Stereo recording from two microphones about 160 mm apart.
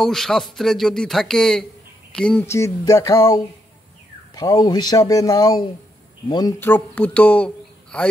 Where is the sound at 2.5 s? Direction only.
20° left (ahead or behind).